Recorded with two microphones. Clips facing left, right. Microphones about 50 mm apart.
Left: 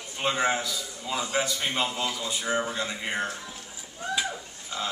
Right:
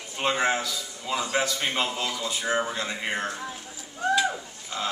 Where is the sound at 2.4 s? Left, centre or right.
Centre.